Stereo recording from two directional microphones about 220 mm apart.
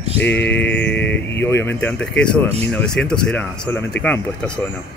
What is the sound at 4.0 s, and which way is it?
Speech, 50° left (ahead or behind).